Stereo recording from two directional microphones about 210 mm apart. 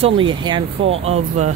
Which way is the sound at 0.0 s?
25° right (ahead or behind).